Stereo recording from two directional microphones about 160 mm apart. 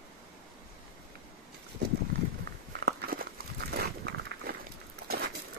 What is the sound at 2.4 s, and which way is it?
Walk, 90° right.